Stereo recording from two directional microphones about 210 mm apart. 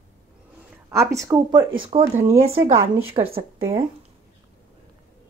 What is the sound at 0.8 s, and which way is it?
Speech, 15° right (ahead or behind).